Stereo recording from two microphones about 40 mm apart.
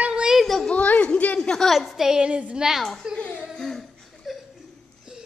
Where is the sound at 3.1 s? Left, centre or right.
Left.